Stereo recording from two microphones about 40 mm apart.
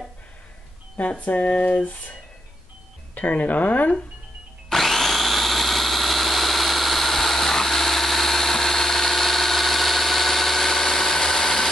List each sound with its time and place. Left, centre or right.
0.9 s speech: left
3.2 s speech: left
4.6 s power tool: centre